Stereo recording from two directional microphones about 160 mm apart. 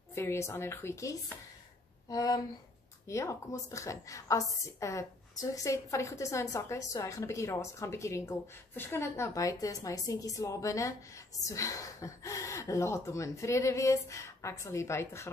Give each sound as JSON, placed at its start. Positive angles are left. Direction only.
{"t": 0.1, "sound": "a woman's voice", "side_deg": 15}